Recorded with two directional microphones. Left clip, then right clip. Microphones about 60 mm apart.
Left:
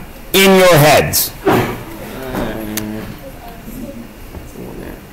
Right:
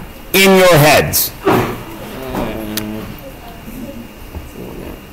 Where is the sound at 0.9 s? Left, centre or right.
Centre.